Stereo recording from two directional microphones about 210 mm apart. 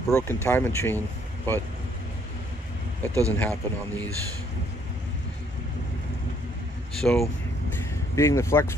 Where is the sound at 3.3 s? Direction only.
5° left (ahead or behind).